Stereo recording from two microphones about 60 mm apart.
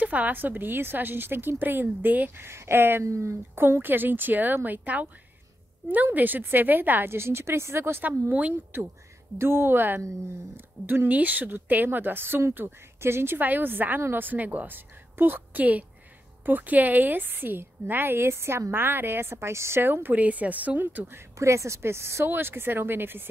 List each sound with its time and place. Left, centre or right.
0.0 s speech: right
2.4 s a woman's voice: right
6.1 s speech: right
8.3 s a woman's voice: right
9.4 s speech: right
19.8 s a woman's voice: right
21.4 s speech: right